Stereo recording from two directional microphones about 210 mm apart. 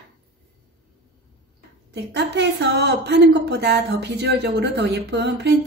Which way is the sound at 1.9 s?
55° right (ahead or behind).